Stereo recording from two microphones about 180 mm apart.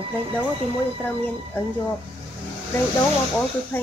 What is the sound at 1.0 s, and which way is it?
Speech, 10° left (ahead or behind).